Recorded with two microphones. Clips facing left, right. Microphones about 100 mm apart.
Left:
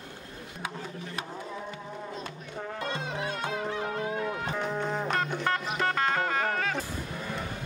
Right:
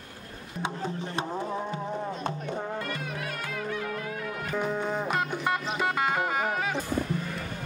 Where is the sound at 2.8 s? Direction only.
25° left (ahead or behind).